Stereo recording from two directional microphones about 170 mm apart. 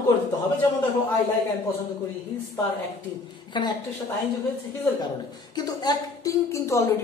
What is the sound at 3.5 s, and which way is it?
Speech, 25° left (ahead or behind).